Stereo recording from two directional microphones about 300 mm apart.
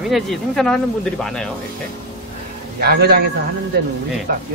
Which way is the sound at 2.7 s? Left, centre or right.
Right.